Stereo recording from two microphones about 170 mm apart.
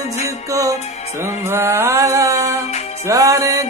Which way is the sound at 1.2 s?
15° right (ahead or behind).